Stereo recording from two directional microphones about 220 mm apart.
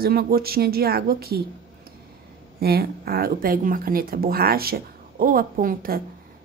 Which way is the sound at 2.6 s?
45° right (ahead or behind).